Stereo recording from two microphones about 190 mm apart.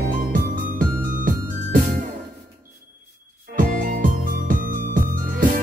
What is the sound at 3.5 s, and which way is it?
Music, 45° right (ahead or behind).